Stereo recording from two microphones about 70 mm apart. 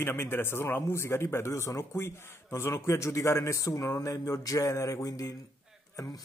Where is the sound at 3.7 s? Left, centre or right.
Left.